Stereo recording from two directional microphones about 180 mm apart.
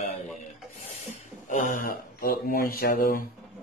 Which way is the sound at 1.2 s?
45° left (ahead or behind).